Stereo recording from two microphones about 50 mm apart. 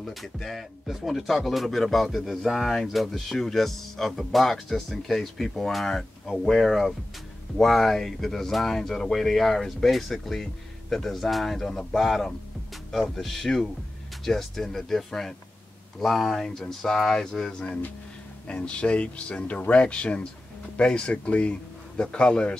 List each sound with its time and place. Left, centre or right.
0.0 s speech: centre
18.5 s speech: left